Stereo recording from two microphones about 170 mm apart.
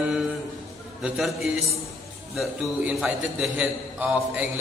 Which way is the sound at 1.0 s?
Centre (ahead or behind).